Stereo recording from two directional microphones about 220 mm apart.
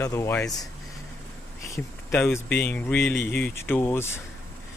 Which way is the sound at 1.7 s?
10° left (ahead or behind).